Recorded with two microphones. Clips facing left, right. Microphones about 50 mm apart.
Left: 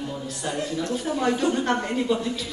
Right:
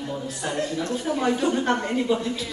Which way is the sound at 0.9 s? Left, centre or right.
Centre.